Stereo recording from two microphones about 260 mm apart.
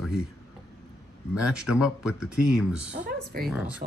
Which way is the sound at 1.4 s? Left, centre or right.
Centre.